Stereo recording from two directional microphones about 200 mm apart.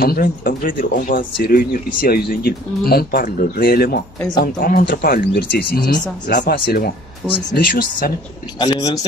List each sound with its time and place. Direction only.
0.0 s speech: 45° left (ahead or behind)
8.5 s speech: 20° left (ahead or behind)